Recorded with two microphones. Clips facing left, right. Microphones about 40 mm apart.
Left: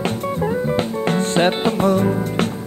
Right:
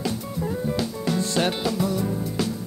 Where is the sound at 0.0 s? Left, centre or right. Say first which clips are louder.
Left 7 dB; left.